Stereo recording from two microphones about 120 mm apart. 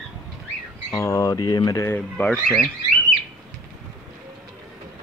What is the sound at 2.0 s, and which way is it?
Speech, 10° left (ahead or behind).